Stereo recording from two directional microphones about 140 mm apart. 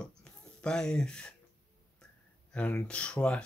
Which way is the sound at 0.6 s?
5° left (ahead or behind).